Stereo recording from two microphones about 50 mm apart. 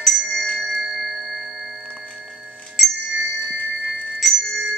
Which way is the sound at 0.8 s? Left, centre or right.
Centre.